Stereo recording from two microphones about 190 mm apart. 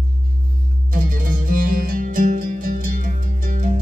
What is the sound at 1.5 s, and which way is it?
Music, 45° right (ahead or behind).